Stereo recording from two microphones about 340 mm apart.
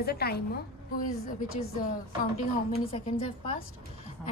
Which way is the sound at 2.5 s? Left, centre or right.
Centre.